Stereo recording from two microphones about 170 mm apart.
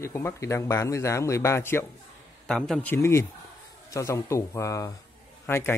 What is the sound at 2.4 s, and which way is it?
Speech, 5° left (ahead or behind).